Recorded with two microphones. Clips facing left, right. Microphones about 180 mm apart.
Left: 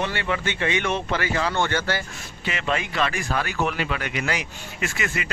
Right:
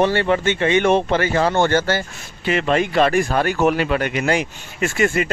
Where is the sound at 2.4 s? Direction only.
45° right (ahead or behind).